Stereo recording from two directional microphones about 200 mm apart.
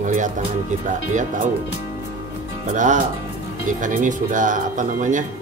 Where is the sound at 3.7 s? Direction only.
40° right (ahead or behind).